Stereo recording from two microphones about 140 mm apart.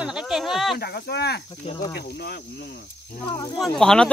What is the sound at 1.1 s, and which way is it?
Speech, 90° left.